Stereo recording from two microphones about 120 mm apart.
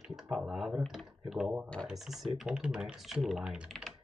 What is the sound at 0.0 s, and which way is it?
Speech, 5° right (ahead or behind).